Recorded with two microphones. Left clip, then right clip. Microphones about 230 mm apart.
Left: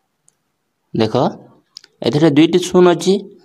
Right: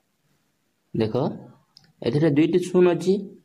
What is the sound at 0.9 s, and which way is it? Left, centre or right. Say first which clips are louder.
Speech: left 9 dB; left.